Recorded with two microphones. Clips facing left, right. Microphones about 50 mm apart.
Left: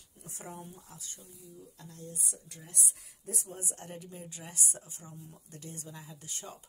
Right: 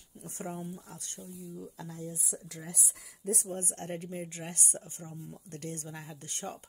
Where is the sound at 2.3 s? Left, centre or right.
Right.